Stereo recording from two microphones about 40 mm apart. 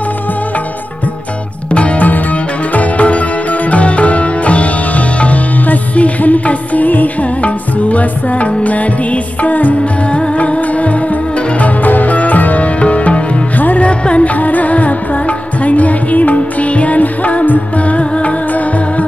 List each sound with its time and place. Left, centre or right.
1.7 s music: left